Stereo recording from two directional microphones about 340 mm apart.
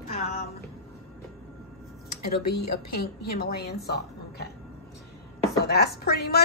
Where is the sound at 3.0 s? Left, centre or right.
Left.